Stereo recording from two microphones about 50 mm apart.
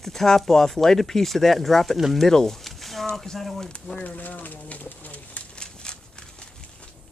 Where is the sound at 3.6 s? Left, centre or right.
Centre.